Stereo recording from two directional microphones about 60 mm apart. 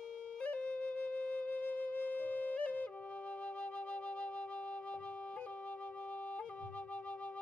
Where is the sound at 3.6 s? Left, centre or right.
Left.